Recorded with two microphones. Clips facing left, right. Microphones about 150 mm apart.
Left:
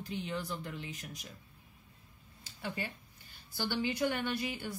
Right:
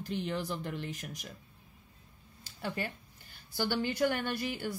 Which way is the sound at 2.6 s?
50° right (ahead or behind).